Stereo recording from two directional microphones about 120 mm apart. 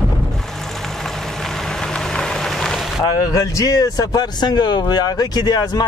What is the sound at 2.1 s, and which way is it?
Rain on surface, 5° left (ahead or behind).